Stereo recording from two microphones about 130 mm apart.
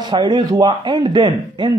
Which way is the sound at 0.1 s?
35° right (ahead or behind).